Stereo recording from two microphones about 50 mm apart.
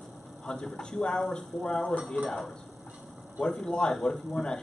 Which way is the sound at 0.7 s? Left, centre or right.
Centre.